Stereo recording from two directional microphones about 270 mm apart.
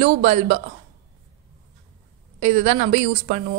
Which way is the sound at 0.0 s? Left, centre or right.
Right.